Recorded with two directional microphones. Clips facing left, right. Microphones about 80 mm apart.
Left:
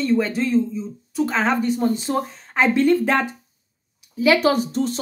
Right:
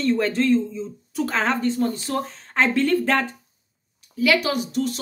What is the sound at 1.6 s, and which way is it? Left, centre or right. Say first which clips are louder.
Speech: left 2 dB; centre.